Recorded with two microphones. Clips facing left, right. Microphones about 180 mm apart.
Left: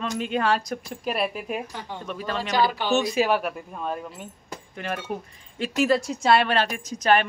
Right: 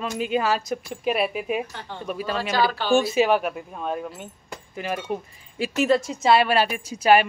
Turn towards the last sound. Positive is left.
turn(degrees=-10)  # may be behind; listen again after turning